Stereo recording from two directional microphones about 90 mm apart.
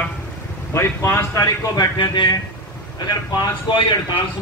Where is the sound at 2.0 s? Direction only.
60° left (ahead or behind).